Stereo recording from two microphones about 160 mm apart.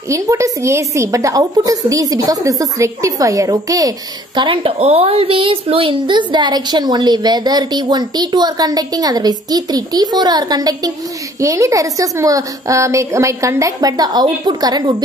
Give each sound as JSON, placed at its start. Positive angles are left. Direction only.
{"t": 0.1, "sound": "a woman's voice", "side_deg": -20}
{"t": 4.4, "sound": "a woman's voice", "side_deg": -35}